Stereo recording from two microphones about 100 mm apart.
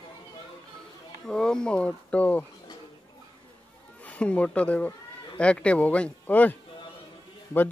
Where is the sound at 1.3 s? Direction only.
10° left (ahead or behind).